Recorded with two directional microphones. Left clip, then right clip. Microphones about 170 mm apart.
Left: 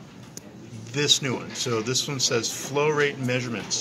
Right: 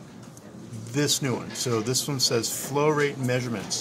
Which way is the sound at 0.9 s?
50° right (ahead or behind).